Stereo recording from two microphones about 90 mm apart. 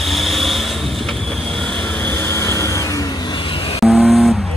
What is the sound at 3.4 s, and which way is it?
Vehicle, 80° left.